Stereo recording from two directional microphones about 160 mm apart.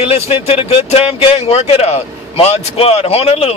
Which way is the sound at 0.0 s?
40° left (ahead or behind).